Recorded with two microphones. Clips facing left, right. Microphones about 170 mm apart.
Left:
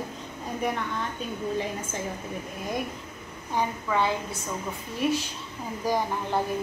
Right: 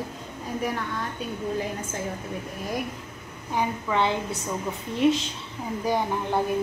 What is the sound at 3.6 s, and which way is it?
A woman's voice, 20° right (ahead or behind).